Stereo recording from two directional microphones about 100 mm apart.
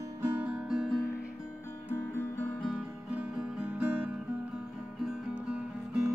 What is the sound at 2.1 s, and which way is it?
Music, 20° left (ahead or behind).